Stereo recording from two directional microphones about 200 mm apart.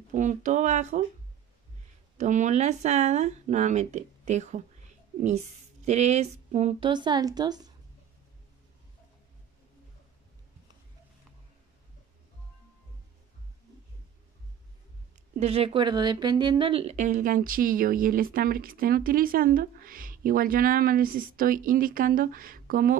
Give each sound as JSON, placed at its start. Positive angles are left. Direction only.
{"t": 0.1, "sound": "speech", "side_deg": -40}
{"t": 2.1, "sound": "speech", "side_deg": -35}
{"t": 6.9, "sound": "a woman's voice", "side_deg": -20}
{"t": 15.3, "sound": "speech", "side_deg": -30}